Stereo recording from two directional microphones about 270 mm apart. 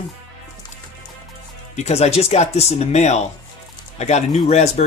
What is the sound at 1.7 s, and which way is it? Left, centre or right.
Speech, left.